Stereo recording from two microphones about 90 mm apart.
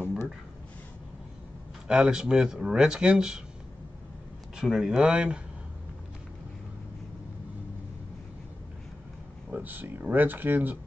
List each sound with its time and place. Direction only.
1.9 s speech: 10° right (ahead or behind)
4.6 s speech: 5° right (ahead or behind)
9.5 s speech: 20° right (ahead or behind)